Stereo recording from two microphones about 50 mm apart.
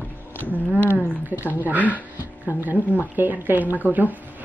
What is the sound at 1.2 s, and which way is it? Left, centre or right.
Speech, right.